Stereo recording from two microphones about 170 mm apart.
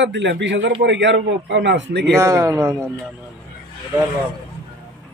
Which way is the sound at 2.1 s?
20° right (ahead or behind).